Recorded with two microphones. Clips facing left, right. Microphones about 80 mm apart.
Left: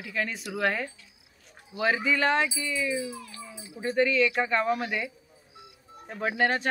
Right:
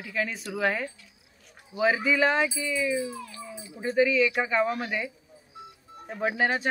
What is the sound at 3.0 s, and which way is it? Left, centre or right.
Speech, right.